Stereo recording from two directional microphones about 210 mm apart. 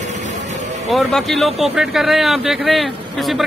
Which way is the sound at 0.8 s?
Centre (ahead or behind).